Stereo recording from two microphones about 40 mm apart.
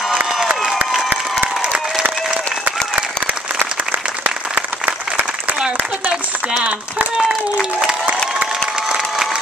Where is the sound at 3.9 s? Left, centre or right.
Right.